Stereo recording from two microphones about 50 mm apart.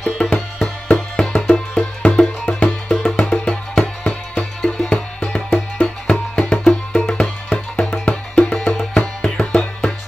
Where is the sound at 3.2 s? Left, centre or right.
Left.